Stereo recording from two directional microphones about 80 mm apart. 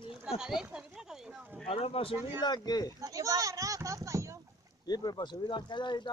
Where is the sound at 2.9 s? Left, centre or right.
Right.